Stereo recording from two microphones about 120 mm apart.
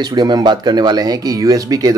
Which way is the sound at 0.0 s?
35° right (ahead or behind).